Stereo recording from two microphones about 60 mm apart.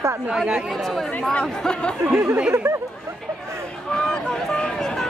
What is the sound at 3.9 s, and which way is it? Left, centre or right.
Speech, centre.